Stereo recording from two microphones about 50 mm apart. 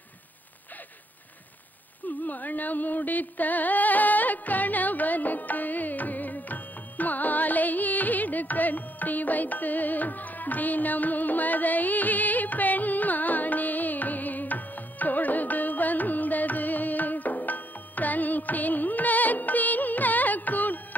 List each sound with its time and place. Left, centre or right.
2.2 s music: left